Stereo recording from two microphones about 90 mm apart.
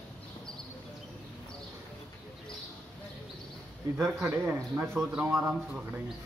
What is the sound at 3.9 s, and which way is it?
Speech, 25° right (ahead or behind).